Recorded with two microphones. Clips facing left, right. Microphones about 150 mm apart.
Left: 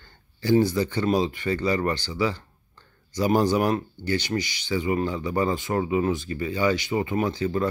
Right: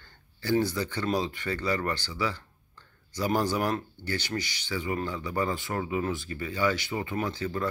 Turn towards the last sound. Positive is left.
turn(degrees=15)  # may be behind; listen again after turning